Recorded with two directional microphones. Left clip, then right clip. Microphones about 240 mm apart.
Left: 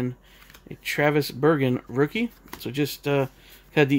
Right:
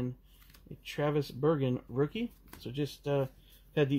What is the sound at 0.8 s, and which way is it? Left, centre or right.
Speech, left.